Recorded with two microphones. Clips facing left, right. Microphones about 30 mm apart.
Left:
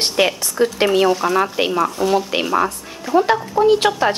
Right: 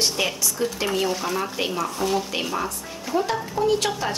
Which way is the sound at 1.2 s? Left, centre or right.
Left.